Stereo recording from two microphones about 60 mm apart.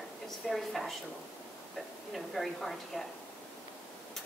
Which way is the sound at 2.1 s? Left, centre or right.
Centre.